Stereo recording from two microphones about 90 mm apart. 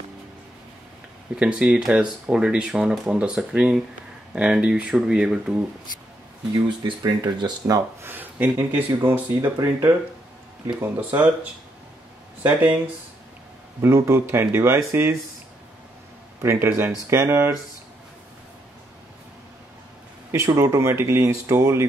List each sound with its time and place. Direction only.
1.3 s speech: 10° right (ahead or behind)
6.5 s speech: 65° right (ahead or behind)
7.0 s speech: 55° right (ahead or behind)
7.6 s speech: 35° right (ahead or behind)
8.1 s speech: 20° right (ahead or behind)
12.4 s speech: 20° right (ahead or behind)
13.7 s speech: 30° right (ahead or behind)
16.4 s speech: 30° right (ahead or behind)
20.2 s speech: 35° right (ahead or behind)